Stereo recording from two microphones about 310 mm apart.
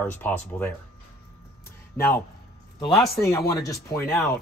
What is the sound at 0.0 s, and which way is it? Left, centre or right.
Speech, centre.